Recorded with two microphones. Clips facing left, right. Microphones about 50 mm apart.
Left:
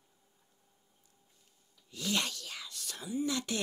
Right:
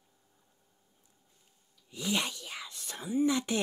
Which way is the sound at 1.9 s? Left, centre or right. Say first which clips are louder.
Right 2 dB; centre.